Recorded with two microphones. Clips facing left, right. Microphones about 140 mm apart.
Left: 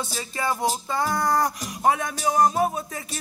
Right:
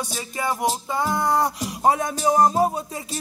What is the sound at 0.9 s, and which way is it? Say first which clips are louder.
Music: right 1 dB; 20° right (ahead or behind).